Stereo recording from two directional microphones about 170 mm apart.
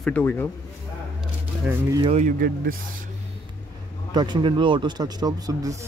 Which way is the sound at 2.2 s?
55° right (ahead or behind).